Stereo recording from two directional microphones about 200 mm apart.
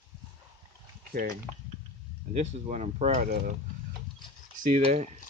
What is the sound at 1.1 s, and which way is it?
Speech, 45° right (ahead or behind).